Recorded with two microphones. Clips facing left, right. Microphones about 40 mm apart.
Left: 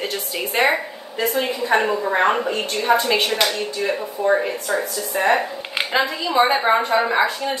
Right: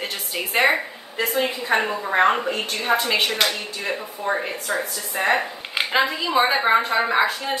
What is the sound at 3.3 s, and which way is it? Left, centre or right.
Speech, right.